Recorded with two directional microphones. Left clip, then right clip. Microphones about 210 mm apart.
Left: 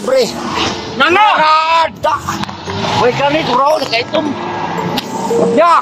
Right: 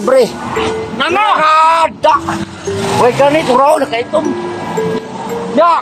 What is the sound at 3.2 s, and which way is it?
Speech, 55° right (ahead or behind).